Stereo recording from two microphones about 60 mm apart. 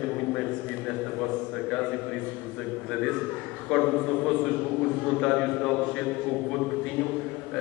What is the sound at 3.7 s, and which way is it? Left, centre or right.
Speech, centre.